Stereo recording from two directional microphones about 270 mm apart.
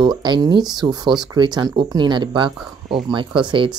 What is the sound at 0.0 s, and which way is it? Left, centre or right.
Speech, centre.